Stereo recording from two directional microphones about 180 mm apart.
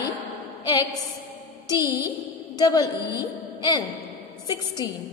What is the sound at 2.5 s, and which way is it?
A woman's voice, 20° left (ahead or behind).